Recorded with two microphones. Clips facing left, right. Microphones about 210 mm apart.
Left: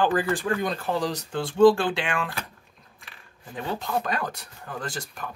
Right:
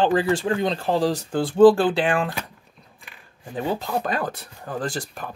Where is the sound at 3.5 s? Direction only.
35° right (ahead or behind).